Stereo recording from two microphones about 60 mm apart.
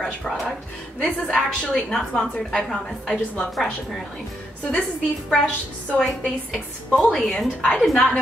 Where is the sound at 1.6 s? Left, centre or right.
Centre.